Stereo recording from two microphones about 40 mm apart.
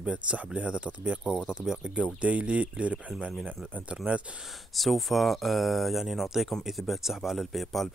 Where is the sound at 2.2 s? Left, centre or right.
Right.